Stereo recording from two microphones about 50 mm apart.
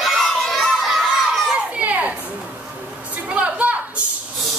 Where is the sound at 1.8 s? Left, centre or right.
Right.